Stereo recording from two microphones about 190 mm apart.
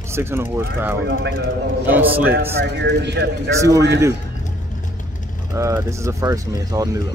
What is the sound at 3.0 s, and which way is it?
Speech, 65° right (ahead or behind).